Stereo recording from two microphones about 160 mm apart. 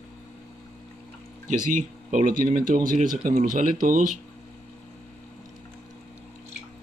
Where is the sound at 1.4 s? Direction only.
55° right (ahead or behind).